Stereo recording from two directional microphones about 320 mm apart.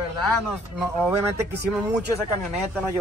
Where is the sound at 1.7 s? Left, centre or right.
Centre.